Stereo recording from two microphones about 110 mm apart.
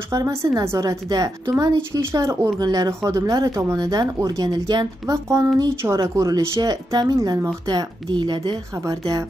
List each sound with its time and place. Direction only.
0.1 s a woman's voice: 30° right (ahead or behind)